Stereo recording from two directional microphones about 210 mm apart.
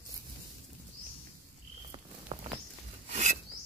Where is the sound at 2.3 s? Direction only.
25° right (ahead or behind).